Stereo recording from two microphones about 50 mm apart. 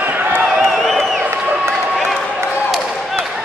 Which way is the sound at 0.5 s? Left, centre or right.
Centre.